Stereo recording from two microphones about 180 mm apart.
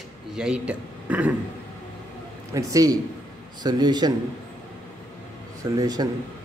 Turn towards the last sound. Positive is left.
turn(degrees=-20)  # may be behind; listen again after turning